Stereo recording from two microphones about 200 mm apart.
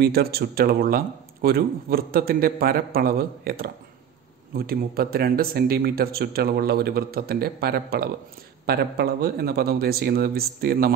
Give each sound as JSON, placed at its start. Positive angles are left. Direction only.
{"t": 0.0, "sound": "a man's voice", "side_deg": -50}